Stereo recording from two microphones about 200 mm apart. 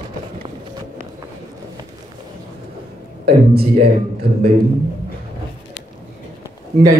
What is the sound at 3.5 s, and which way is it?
Speech, 50° right (ahead or behind).